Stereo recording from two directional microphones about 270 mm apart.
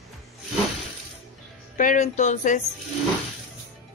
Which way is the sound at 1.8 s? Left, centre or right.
Left.